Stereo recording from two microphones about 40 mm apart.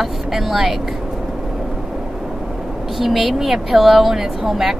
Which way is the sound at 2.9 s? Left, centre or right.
Centre.